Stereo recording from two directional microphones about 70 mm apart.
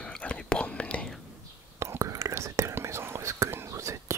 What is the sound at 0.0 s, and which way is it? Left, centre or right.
Whispering, centre.